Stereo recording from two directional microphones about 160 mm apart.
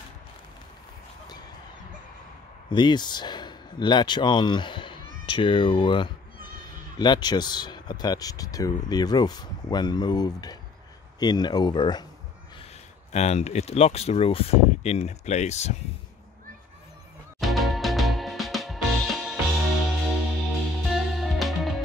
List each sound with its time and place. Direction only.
2.7 s speech: 30° left (ahead or behind)
13.1 s speech: 45° left (ahead or behind)
17.4 s music: centre (ahead or behind)